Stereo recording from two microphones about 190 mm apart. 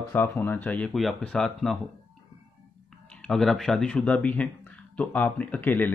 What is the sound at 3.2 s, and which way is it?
Speech, centre (ahead or behind).